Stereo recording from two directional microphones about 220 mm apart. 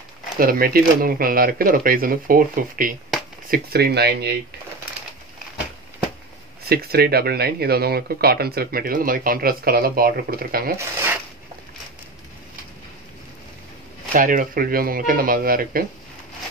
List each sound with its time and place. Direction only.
0.4 s speech: 40° right (ahead or behind)
6.7 s speech: 45° right (ahead or behind)
14.1 s speech: 40° right (ahead or behind)